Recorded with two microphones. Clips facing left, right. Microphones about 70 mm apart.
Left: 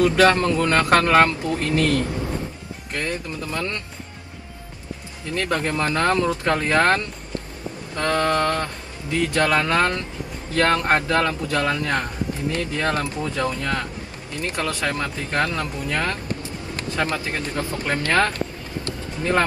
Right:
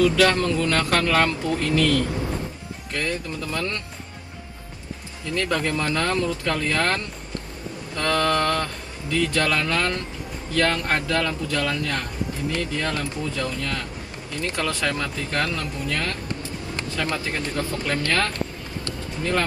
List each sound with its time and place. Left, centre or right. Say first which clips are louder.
0.0 s speech: left 2 dB; left
5.3 s speech: left 1 dB; left
14.3 s speech: even; left
18.9 s music: left 2 dB; left